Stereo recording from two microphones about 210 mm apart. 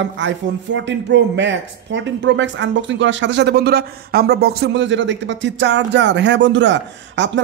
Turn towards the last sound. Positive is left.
turn(degrees=-60)  # may be behind; listen again after turning